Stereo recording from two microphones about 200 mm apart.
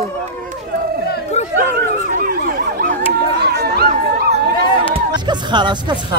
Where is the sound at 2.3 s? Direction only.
45° right (ahead or behind).